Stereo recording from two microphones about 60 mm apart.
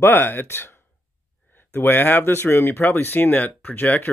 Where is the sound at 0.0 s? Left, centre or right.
Left.